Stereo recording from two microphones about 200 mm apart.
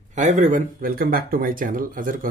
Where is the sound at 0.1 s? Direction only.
35° right (ahead or behind).